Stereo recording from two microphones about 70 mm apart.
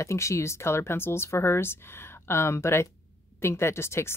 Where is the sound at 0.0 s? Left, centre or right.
Left.